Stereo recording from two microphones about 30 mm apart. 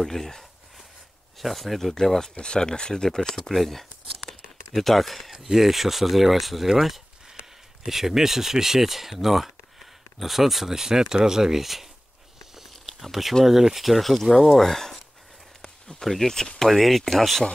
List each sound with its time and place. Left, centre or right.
0.0 s speech: centre
1.4 s speech: centre
2.0 s speech: centre
2.3 s speech: left; by 3.8 s centre
4.3 s a sound: centre
5.3 s speech: centre
11.6 s speech: centre
13.0 s speech: centre
15.6 s a sound: left
16.1 s speech: centre